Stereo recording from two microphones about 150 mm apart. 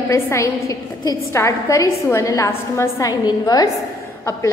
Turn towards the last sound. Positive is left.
turn(degrees=25)  # may be behind; listen again after turning